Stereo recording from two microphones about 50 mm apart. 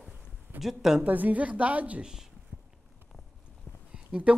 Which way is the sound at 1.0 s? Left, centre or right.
Right.